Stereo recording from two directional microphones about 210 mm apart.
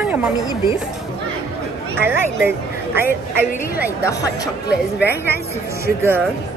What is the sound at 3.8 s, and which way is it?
Speech, 15° left (ahead or behind).